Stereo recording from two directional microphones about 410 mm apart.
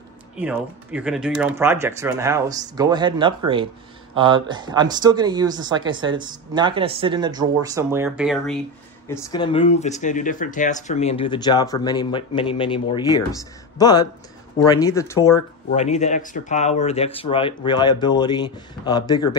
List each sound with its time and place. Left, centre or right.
0.4 s speech: centre